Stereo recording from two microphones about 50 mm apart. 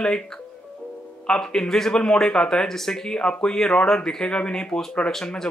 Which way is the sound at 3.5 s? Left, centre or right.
Centre.